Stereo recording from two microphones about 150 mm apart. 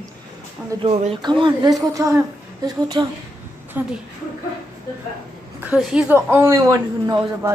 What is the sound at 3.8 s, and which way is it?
Speech, 15° right (ahead or behind).